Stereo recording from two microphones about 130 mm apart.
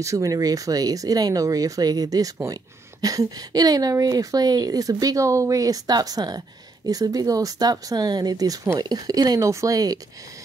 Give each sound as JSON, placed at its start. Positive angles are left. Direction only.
{"t": 0.0, "sound": "speech", "side_deg": -25}